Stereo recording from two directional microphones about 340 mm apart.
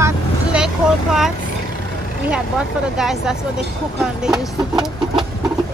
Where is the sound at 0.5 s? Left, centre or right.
Centre.